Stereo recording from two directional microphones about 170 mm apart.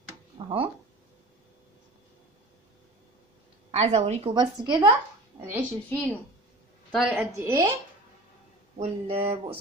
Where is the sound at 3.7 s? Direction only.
40° right (ahead or behind).